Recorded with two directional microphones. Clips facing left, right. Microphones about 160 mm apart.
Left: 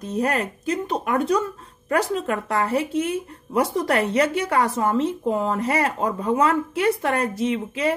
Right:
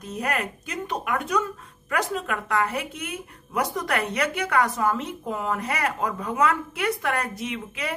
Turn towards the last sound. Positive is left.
turn(degrees=30)  # may be behind; listen again after turning